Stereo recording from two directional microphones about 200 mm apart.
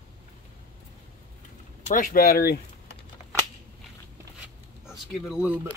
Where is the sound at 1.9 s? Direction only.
45° left (ahead or behind).